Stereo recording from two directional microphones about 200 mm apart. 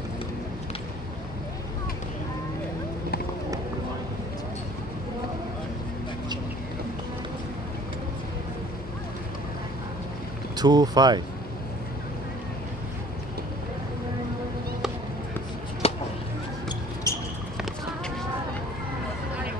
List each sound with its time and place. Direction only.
10.6 s speech: 20° right (ahead or behind)
15.8 s a sound: 30° left (ahead or behind)
17.1 s basketball bounce: 15° left (ahead or behind)